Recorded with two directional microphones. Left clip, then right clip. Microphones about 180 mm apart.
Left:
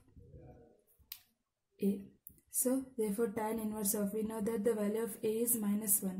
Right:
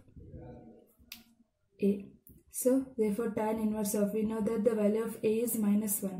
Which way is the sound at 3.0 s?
40° left (ahead or behind).